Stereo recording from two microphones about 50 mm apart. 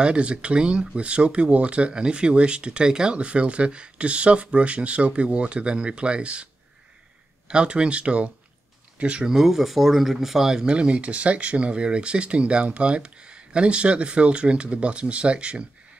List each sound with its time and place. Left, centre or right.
0.0 s speech: right
9.3 s speech: centre; by 15.6 s right